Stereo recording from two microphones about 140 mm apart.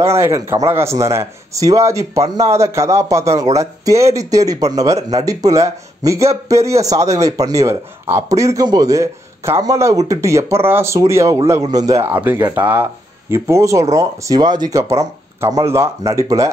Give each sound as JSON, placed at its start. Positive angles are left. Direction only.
{"t": 0.0, "sound": "speech", "side_deg": -20}
{"t": 12.1, "sound": "speech", "side_deg": -15}